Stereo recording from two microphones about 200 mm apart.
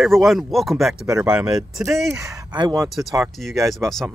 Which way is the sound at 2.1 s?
15° right (ahead or behind).